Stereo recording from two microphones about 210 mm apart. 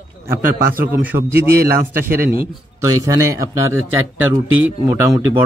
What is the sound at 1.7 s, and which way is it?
Speech, 45° right (ahead or behind).